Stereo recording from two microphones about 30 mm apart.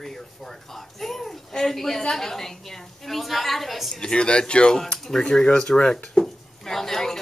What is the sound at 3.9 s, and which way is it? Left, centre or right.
Speech, left.